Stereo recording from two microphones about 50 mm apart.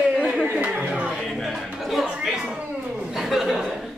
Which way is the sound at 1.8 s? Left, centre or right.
Centre.